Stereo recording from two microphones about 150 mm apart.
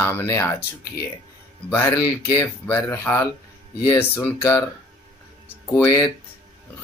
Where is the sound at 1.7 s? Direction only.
15° left (ahead or behind).